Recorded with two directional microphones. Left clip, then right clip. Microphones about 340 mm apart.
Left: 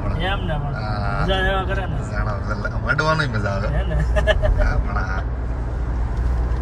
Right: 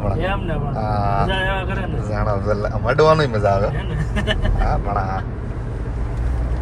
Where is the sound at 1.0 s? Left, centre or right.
Centre.